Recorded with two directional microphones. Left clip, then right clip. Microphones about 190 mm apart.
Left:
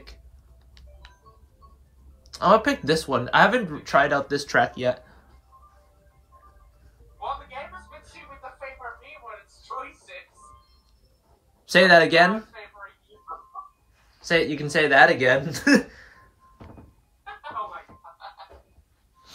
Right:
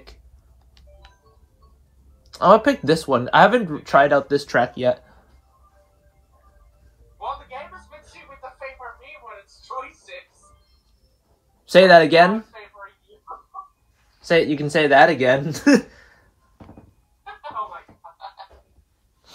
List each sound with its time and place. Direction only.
2.2 s speech: 15° right (ahead or behind)
9.2 s a sound: 35° right (ahead or behind)
11.6 s speech: 15° right (ahead or behind)
13.5 s chicken: 35° right (ahead or behind)
14.2 s speech: 15° right (ahead or behind)